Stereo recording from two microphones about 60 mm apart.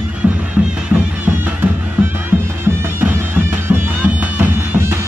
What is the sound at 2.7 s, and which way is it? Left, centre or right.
Music, right.